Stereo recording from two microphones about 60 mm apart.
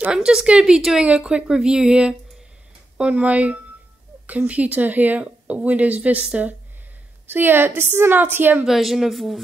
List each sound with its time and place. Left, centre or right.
0.1 s speech: centre
7.2 s a woman's voice: right
8.6 s a woman's voice: centre